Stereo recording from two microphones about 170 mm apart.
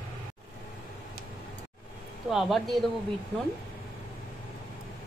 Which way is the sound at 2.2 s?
Centre (ahead or behind).